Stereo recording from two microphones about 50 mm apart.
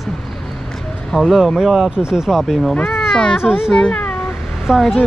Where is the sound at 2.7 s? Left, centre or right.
Centre.